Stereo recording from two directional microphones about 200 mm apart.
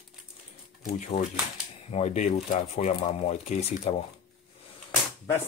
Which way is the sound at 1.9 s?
35° left (ahead or behind).